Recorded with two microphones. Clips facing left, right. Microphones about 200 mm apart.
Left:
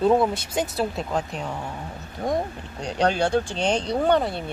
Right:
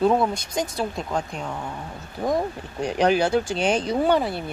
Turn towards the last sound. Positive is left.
turn(degrees=-5)  # may be behind; listen again after turning